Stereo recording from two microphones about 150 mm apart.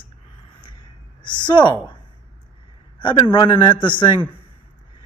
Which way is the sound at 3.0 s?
30° left (ahead or behind).